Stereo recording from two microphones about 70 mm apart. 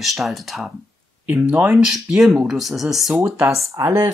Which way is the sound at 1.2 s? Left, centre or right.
Right.